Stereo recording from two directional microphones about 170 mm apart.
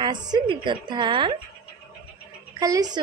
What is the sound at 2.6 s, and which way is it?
Speech, 20° right (ahead or behind).